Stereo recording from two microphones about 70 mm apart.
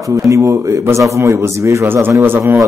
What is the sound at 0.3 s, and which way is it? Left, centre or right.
Speech, right.